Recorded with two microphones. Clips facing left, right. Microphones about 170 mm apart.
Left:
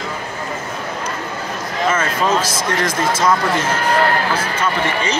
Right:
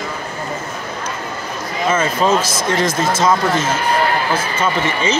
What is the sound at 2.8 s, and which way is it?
Speech, 25° right (ahead or behind).